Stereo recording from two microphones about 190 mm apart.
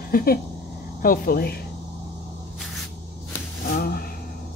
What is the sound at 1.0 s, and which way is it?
Speech, 50° left (ahead or behind).